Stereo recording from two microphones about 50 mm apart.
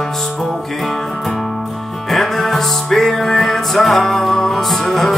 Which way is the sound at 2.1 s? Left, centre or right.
Centre.